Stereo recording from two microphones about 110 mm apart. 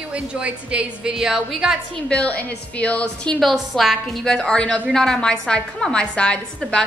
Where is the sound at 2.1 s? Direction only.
10° left (ahead or behind).